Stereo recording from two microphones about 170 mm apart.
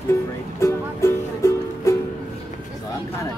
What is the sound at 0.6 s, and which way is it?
Music, 15° left (ahead or behind).